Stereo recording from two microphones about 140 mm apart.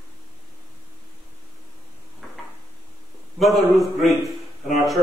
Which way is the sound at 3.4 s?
Centre (ahead or behind).